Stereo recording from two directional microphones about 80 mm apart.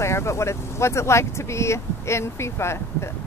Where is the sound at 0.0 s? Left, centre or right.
Left.